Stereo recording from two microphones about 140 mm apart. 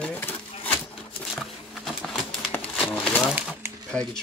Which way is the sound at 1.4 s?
5° left (ahead or behind).